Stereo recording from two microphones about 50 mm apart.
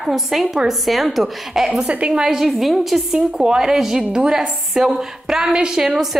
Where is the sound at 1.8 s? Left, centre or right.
Right.